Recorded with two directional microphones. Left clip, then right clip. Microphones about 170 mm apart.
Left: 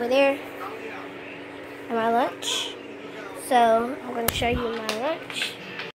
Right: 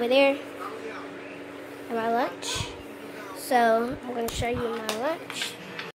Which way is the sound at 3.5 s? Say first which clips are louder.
Left 3 dB; 10° right (ahead or behind).